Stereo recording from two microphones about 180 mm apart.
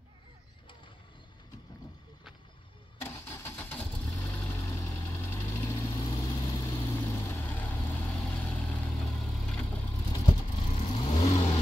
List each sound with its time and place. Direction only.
3.0 s vehicle: 15° left (ahead or behind); by 9.7 s centre (ahead or behind)
10.2 s vehicle: 35° left (ahead or behind)